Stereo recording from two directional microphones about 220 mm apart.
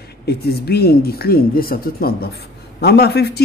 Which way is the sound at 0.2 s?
45° left (ahead or behind).